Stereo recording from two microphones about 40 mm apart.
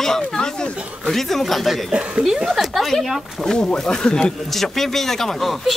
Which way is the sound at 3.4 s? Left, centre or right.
Centre.